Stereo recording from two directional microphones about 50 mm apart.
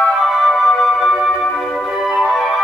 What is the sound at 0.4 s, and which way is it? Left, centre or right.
Music, centre.